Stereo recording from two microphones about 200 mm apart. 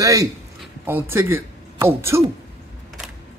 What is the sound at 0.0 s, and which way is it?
A man's voice, 15° right (ahead or behind).